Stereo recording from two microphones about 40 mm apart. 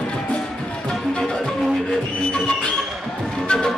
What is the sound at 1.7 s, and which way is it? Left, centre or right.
Music, centre.